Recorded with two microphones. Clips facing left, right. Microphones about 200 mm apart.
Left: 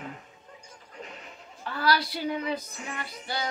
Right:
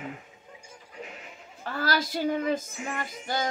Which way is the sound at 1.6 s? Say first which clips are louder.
Left 1 dB; 45° right (ahead or behind).